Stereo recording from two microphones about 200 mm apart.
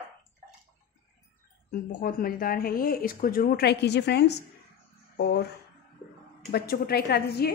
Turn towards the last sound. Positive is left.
turn(degrees=55)  # may be behind; listen again after turning